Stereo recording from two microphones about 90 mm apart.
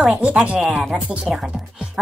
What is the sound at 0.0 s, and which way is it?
Speech, 10° right (ahead or behind).